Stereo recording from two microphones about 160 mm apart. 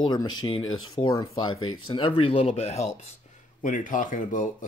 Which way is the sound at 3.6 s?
55° left (ahead or behind).